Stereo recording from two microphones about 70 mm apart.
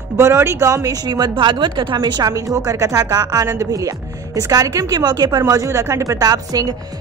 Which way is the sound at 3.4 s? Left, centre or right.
Right.